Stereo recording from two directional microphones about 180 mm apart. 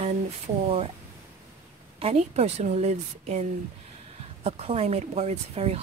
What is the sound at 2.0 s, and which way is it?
Speech, 35° right (ahead or behind).